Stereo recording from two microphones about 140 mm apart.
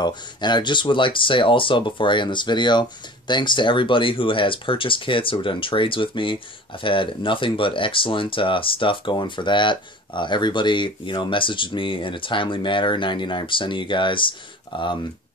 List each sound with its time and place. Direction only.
0.0 s speech: 30° left (ahead or behind)